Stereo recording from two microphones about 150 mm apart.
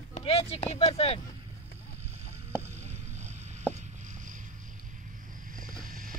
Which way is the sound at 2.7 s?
50° right (ahead or behind).